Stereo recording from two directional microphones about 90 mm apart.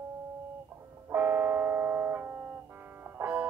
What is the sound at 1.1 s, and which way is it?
Music, 25° right (ahead or behind).